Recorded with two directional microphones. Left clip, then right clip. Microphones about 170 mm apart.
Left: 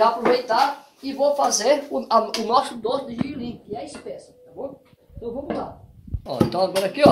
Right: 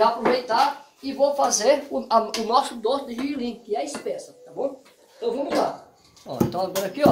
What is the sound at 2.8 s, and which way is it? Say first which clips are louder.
Speech: even; 55° left (ahead or behind).